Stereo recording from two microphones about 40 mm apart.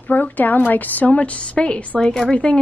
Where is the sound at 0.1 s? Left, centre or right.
Left.